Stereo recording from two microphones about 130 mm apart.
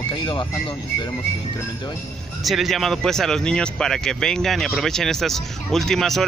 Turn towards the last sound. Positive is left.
turn(degrees=5)  # may be behind; listen again after turning